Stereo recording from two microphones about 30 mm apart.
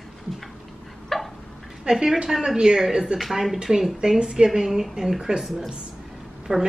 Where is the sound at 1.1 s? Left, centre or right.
Centre.